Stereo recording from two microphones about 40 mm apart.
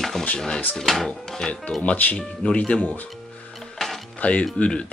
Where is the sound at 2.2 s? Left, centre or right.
Centre.